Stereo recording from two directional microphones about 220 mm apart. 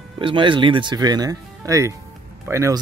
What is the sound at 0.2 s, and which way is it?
Speech, 25° right (ahead or behind).